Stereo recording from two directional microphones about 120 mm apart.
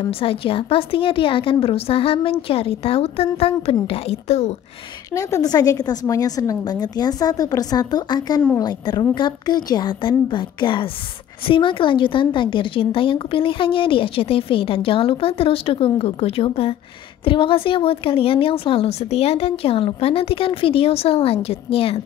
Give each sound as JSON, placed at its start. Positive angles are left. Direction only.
{"t": 0.0, "sound": "a woman's voice", "side_deg": 50}
{"t": 5.1, "sound": "a woman's voice", "side_deg": 30}